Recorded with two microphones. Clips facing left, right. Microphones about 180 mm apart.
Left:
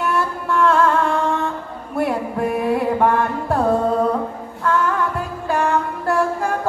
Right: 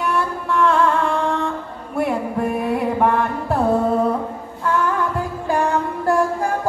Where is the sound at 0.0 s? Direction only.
Centre (ahead or behind).